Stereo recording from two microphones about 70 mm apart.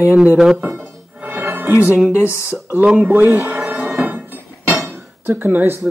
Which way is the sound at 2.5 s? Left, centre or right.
Right.